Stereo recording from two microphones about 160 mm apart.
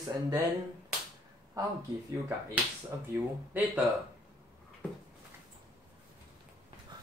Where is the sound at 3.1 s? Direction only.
15° right (ahead or behind).